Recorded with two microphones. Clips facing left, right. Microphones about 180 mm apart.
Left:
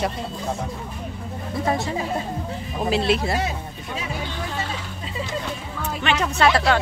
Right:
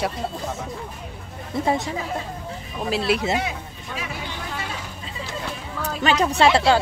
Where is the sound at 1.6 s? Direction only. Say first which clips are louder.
Right 1 dB; 20° right (ahead or behind).